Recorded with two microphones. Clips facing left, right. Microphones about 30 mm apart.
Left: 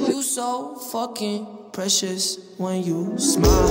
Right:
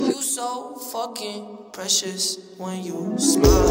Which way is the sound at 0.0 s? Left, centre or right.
Centre.